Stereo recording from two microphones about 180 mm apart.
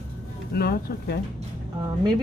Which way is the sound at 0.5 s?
60° left (ahead or behind).